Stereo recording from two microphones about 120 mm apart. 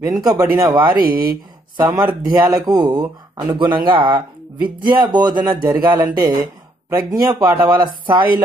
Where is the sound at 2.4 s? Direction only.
35° right (ahead or behind).